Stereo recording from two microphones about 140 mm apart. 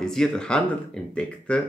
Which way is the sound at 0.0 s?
5° left (ahead or behind).